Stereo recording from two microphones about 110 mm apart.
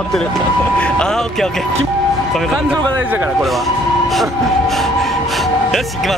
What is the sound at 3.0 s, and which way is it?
Speech, 15° right (ahead or behind).